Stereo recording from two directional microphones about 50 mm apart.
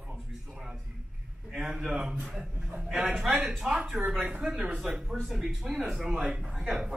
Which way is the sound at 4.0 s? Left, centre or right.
Right.